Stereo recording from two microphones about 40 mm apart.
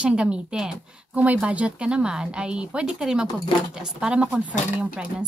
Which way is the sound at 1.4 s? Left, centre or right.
Right.